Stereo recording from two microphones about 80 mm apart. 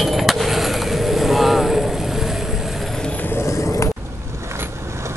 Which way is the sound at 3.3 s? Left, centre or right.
Left.